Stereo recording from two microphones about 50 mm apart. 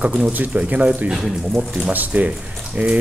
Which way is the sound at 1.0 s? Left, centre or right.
Centre.